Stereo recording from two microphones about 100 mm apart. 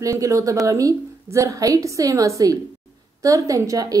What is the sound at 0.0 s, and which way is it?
A woman's voice, 35° right (ahead or behind).